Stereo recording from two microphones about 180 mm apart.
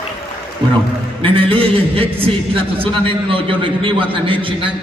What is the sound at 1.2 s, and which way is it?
Speech, 30° right (ahead or behind).